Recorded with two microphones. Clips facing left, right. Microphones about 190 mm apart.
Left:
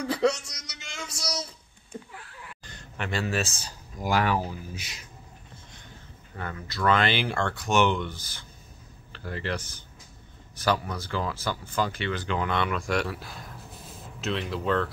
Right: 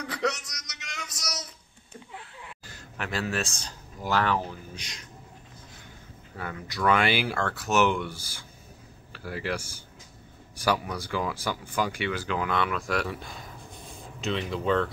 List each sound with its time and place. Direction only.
0.0 s a sound: 30° left (ahead or behind)
2.6 s speech: 5° right (ahead or behind)
6.3 s speech: 10° right (ahead or behind)